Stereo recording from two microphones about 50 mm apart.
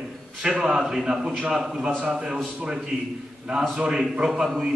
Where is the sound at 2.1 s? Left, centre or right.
Centre.